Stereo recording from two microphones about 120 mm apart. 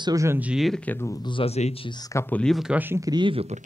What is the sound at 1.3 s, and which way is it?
Speech, 55° left (ahead or behind).